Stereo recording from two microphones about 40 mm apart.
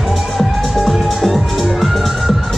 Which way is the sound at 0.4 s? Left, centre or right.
Centre.